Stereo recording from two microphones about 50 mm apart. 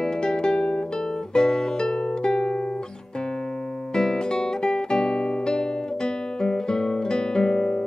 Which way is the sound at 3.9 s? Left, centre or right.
Centre.